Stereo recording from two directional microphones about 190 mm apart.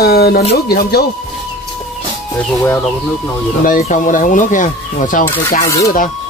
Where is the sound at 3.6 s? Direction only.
45° left (ahead or behind).